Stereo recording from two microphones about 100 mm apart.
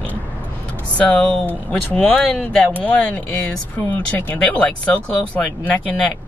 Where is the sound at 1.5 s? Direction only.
15° left (ahead or behind).